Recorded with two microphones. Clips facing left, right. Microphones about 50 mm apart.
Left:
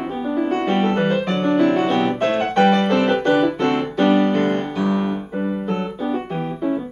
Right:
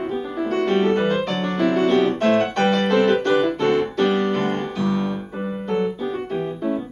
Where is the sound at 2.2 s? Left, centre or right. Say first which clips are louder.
Left 1 dB; centre.